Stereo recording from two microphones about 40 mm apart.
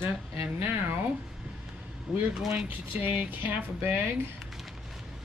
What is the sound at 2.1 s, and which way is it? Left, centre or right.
Speech, centre.